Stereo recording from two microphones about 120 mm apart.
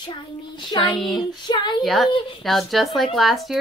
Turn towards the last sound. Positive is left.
turn(degrees=0)  # may be behind; listen again after turning